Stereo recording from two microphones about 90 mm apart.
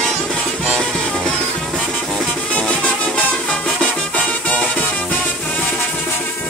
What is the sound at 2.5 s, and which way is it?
Music, 15° left (ahead or behind).